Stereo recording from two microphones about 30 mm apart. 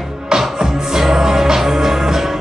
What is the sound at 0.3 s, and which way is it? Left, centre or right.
Music, centre.